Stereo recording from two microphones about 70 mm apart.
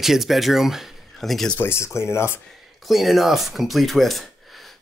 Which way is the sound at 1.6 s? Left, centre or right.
Left.